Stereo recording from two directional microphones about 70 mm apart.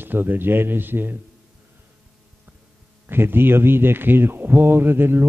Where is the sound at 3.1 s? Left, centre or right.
Right.